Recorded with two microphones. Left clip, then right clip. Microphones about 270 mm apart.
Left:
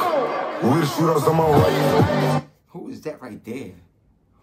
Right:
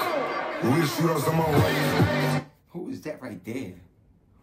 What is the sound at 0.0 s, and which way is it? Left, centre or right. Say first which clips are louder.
A man's voice: left 6 dB; left.